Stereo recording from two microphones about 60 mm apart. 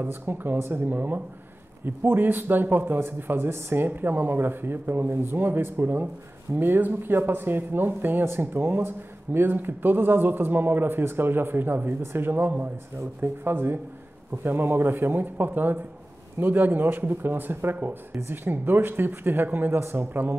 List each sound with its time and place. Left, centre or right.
0.0 s speech: right